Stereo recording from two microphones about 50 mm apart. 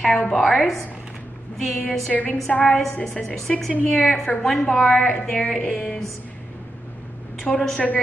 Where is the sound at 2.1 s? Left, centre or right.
Centre.